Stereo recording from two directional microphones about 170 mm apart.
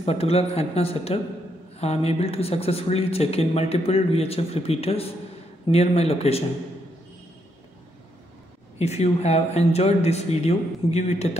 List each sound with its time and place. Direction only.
0.0 s speech: 35° left (ahead or behind)
8.7 s speech: 40° left (ahead or behind)